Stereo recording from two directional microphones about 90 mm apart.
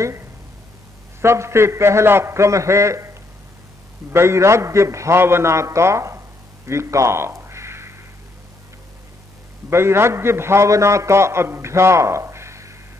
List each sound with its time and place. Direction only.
1.2 s a man's voice: 30° right (ahead or behind)
4.1 s a man's voice: 30° right (ahead or behind)
6.7 s crow: 35° right (ahead or behind)
9.7 s a man's voice: 30° right (ahead or behind)